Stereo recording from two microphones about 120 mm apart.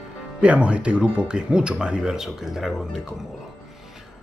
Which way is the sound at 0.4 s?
10° right (ahead or behind).